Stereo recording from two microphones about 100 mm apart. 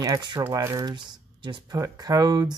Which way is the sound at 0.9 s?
55° right (ahead or behind).